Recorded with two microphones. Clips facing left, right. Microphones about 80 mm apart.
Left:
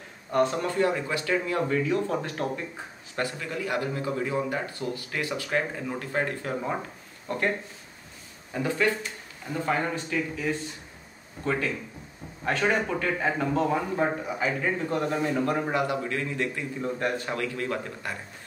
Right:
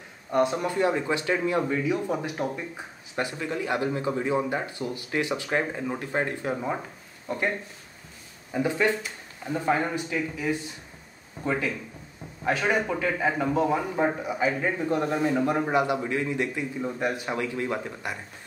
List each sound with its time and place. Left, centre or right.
0.3 s a man's voice: centre
7.2 s speech: centre
8.5 s a man's voice: centre
12.4 s a man's voice: centre